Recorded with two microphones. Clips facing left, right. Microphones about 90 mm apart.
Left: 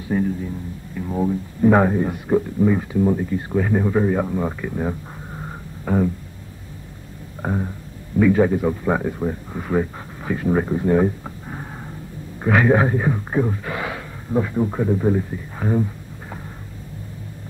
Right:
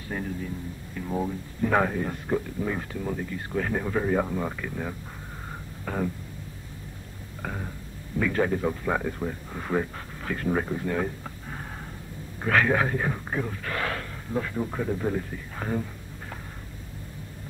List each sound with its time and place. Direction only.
0.1 s a man's voice: 15° left (ahead or behind)
0.9 s music: 10° left (ahead or behind)
1.6 s speech: 20° left (ahead or behind)
3.0 s speech: 20° left (ahead or behind)
5.9 s speech: 15° left (ahead or behind)
7.4 s a sound: 30° left (ahead or behind)
8.2 s speech: 10° left (ahead or behind)
9.6 s speech: 5° left (ahead or behind)